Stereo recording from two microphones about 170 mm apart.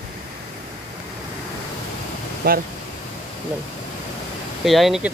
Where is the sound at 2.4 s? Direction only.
65° right (ahead or behind).